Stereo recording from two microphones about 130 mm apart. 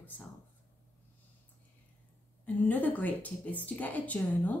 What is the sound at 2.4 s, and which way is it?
A woman's voice, 10° left (ahead or behind).